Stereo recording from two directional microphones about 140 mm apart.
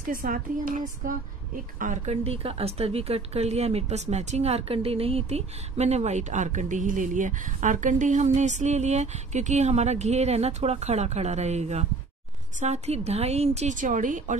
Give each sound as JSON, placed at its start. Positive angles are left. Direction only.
{"t": 0.1, "sound": "a woman's voice", "side_deg": -80}
{"t": 2.2, "sound": "speech", "side_deg": -45}